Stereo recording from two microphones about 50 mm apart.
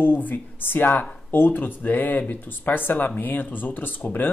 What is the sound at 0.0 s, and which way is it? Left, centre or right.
Speech, left.